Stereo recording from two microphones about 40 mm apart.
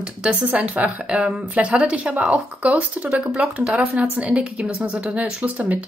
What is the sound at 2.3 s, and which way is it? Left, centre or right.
Speech, right.